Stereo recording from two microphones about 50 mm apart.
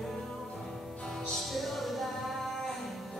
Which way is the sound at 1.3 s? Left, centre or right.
Centre.